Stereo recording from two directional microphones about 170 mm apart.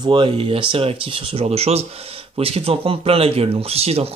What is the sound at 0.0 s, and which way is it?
Speech, 30° right (ahead or behind).